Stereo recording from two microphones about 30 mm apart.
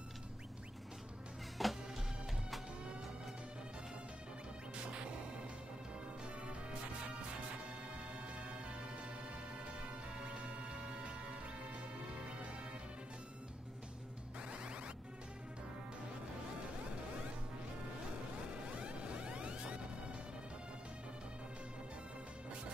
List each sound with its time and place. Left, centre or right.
1.6 s music: centre
10.2 s music: right
18.8 s music: right